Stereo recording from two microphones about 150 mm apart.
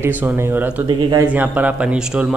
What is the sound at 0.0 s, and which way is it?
Speech, 10° right (ahead or behind).